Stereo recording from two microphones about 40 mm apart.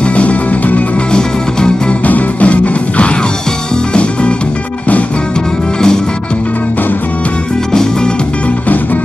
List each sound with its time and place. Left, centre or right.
0.0 s music: left
1.1 s music: centre
2.0 s music: left
7.7 s music: centre